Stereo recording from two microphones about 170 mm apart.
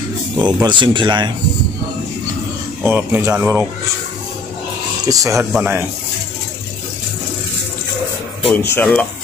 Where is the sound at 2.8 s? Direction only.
10° right (ahead or behind).